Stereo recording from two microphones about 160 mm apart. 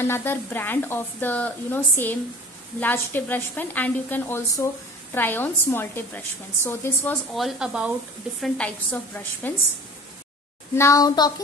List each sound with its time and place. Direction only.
0.0 s a woman's voice: 15° left (ahead or behind)
7.3 s speech: 5° right (ahead or behind)
8.4 s a woman's voice: 10° left (ahead or behind)
10.8 s speech: 20° left (ahead or behind)